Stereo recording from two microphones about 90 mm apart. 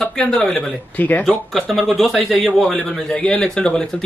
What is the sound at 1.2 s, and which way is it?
Speech, centre (ahead or behind).